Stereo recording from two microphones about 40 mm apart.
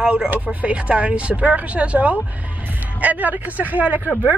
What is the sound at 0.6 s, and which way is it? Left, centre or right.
A woman's voice, right.